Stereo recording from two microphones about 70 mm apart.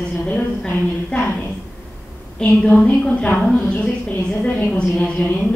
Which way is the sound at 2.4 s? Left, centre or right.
Centre.